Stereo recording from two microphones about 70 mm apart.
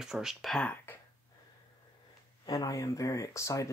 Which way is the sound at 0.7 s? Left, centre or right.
Left.